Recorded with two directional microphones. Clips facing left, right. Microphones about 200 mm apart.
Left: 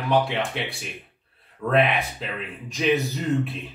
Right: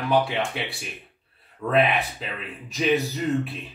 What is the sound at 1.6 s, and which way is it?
Speech, centre (ahead or behind).